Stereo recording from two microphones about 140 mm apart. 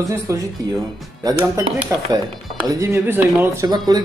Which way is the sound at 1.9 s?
15° right (ahead or behind).